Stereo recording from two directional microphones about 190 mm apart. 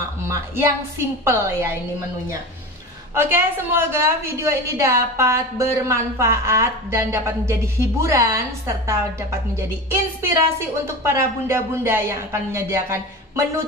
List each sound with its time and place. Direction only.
0.3 s a woman's voice: 15° right (ahead or behind)
3.2 s a woman's voice: 10° right (ahead or behind)
11.1 s a woman's voice: 15° right (ahead or behind)